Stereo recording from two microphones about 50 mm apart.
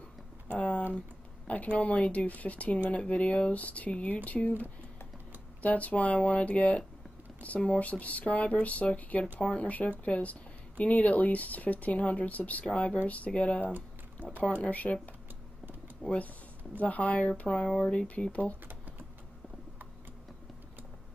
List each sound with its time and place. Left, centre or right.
0.6 s typing: left
1.5 s speech: left
13.7 s typing: right
14.6 s speech: left
16.0 s speech: left